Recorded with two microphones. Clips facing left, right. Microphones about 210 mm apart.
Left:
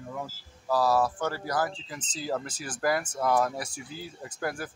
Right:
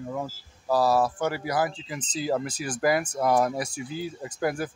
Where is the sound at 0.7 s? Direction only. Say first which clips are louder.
Right 2 dB; 10° right (ahead or behind).